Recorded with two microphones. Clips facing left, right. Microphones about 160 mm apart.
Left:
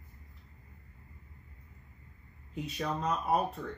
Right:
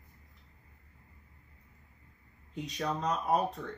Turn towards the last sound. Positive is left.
turn(degrees=5)  # may be behind; listen again after turning